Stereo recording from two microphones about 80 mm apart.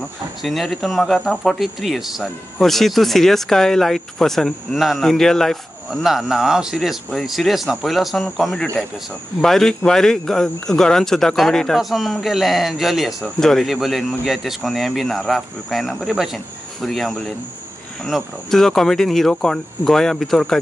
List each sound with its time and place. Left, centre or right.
0.4 s speech: centre